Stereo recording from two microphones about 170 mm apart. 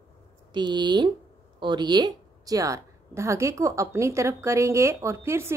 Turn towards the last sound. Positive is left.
turn(degrees=-15)  # may be behind; listen again after turning